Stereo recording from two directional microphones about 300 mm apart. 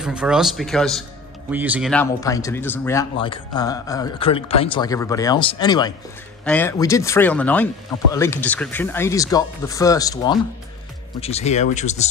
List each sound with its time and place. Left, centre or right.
0.0 s speech: centre; by 12.1 s left